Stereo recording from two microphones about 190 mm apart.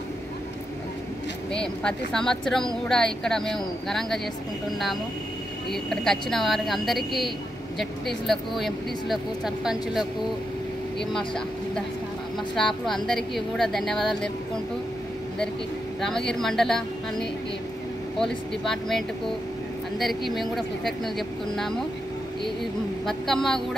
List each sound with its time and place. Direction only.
1.5 s speech: 5° left (ahead or behind)
5.7 s speech: centre (ahead or behind)
11.1 s speech: 5° left (ahead or behind)
16.0 s speech: centre (ahead or behind)